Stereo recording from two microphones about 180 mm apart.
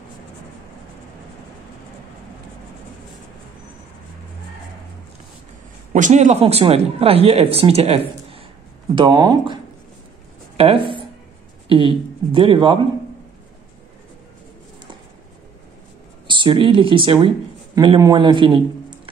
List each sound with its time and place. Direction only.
5.9 s speech: 45° right (ahead or behind); by 9.6 s 25° right (ahead or behind)
11.7 s speech: 30° right (ahead or behind)
16.3 s speech: 25° right (ahead or behind)